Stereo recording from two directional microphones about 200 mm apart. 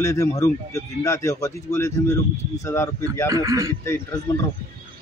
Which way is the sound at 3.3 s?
15° right (ahead or behind).